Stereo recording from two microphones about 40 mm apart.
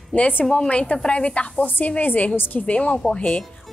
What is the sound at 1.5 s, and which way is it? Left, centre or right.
A woman's voice, left.